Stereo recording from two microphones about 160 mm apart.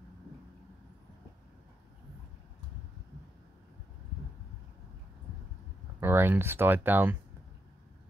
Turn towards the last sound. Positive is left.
turn(degrees=-10)  # may be behind; listen again after turning